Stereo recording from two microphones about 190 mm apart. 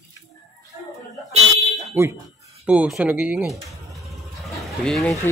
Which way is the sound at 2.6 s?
5° right (ahead or behind).